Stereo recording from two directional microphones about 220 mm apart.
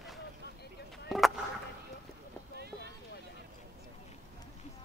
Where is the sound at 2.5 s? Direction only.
45° right (ahead or behind).